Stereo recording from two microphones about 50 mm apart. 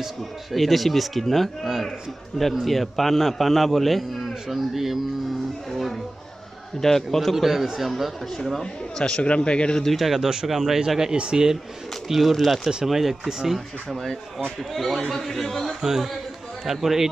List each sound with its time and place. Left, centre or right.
0.0 s a man's voice: centre
5.7 s music: centre
6.8 s a man's voice: centre
8.4 s a man's voice: centre
9.8 s speech: centre
12.1 s a man's voice: centre
13.8 s a man's voice: centre
15.8 s speech: centre